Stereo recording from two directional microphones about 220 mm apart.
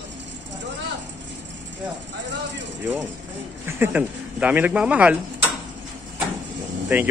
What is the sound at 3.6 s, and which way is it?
Speech, 10° right (ahead or behind).